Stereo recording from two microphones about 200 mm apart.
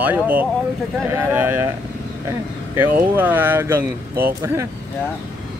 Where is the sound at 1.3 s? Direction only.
10° right (ahead or behind).